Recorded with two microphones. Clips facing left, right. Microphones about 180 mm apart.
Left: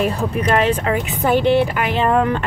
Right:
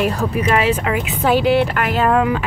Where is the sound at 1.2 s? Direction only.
Centre (ahead or behind).